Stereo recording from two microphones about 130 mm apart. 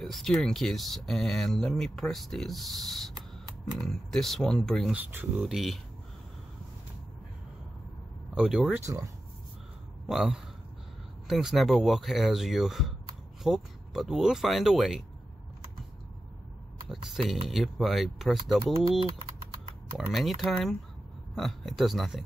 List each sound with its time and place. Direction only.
0.0 s speech: 5° left (ahead or behind)
4.9 s speech: 10° right (ahead or behind)
5.5 s speech: centre (ahead or behind)
8.4 s speech: centre (ahead or behind)
8.7 s speech: 25° right (ahead or behind)
10.0 s speech: 5° right (ahead or behind)
17.1 s speech: centre (ahead or behind)
20.1 s speech: centre (ahead or behind)